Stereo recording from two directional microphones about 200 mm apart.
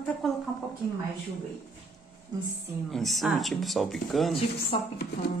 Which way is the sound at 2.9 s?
Centre (ahead or behind).